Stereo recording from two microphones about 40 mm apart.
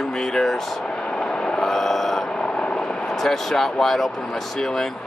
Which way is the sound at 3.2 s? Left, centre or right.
Centre.